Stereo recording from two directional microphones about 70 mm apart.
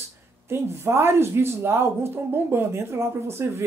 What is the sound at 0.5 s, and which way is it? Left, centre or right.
Speech, right.